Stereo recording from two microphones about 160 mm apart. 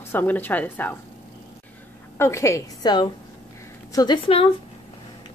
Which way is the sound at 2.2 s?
20° left (ahead or behind).